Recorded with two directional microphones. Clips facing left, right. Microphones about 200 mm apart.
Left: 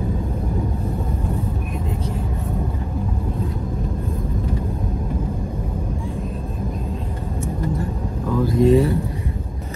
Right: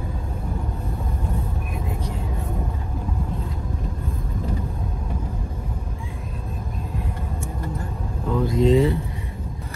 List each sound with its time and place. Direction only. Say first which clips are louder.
8.5 s vehicle: left 3 dB; 20° right (ahead or behind)